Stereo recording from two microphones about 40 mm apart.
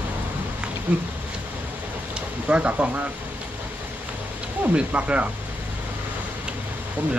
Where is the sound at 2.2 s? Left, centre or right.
Right.